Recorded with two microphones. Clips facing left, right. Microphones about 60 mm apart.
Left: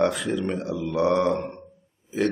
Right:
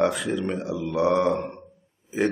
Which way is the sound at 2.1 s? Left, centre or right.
Centre.